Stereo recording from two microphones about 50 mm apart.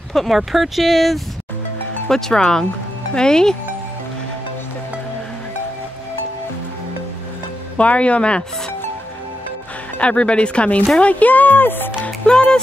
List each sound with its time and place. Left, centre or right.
0.1 s speech: centre
2.0 s speech: centre
7.7 s speech: left
9.9 s speech: left
12.3 s speech: centre